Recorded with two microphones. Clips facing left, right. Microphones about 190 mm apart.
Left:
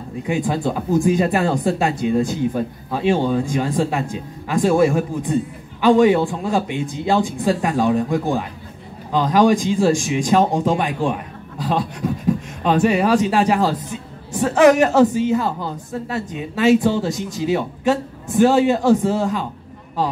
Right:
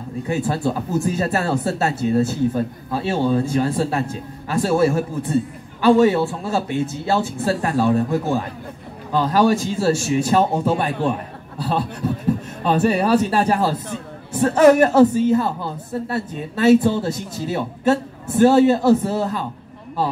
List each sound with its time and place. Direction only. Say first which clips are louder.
0.3 s a man's voice: left 1 dB; 15° left (ahead or behind)